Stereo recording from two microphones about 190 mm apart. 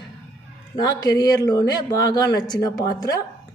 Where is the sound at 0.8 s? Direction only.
20° left (ahead or behind).